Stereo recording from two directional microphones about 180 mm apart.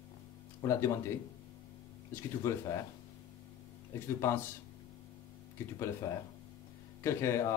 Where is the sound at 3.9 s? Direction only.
15° left (ahead or behind).